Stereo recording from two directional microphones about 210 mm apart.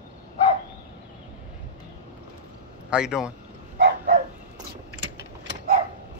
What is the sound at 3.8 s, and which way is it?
Dog, 50° right (ahead or behind).